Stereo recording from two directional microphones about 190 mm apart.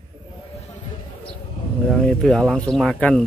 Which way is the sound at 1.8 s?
5° left (ahead or behind).